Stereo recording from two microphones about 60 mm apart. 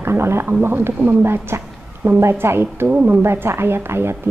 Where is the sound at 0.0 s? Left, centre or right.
Right.